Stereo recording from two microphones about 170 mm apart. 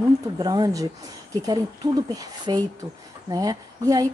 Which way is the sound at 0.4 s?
20° right (ahead or behind).